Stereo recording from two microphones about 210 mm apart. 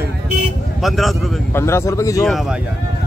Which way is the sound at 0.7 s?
Centre (ahead or behind).